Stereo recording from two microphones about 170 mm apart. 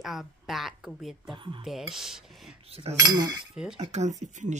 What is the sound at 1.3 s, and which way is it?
Speech, 30° right (ahead or behind).